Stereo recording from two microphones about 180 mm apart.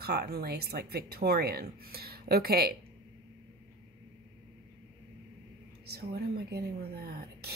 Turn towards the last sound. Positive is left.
turn(degrees=-60)  # may be behind; listen again after turning